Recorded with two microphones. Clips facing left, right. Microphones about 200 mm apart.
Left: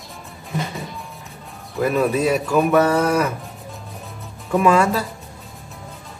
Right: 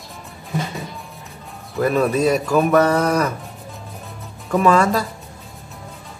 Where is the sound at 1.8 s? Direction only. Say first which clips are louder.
Right 1 dB; centre (ahead or behind).